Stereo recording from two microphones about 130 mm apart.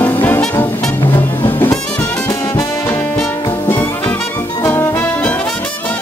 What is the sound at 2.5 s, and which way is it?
Brass instrument, 20° left (ahead or behind).